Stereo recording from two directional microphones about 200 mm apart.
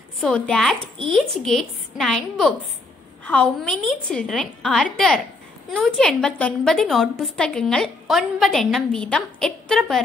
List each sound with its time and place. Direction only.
0.2 s a woman's voice: 5° left (ahead or behind)